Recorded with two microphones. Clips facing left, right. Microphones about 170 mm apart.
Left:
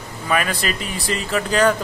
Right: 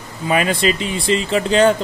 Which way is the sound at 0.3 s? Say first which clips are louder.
Right 5 dB; 25° right (ahead or behind).